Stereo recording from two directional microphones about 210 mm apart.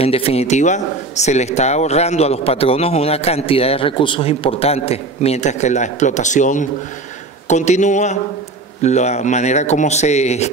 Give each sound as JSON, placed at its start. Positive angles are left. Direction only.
{"t": 0.0, "sound": "speech", "side_deg": 30}